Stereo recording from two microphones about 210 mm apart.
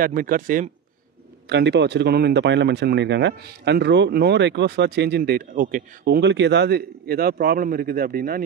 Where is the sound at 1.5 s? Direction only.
55° right (ahead or behind).